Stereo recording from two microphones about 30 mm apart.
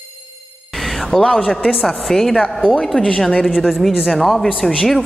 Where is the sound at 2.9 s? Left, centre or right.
Left.